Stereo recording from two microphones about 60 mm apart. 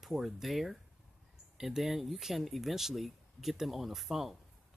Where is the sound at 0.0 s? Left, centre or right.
Centre.